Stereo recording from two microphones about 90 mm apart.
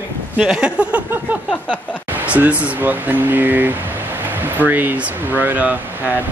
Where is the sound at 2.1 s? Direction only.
15° right (ahead or behind).